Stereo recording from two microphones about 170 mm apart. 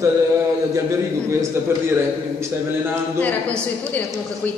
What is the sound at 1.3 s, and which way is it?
Speech, 15° right (ahead or behind).